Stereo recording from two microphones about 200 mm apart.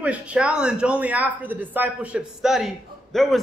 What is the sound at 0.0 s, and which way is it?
A man's voice, 5° right (ahead or behind).